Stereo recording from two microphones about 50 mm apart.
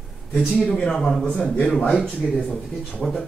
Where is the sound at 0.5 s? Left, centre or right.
Centre.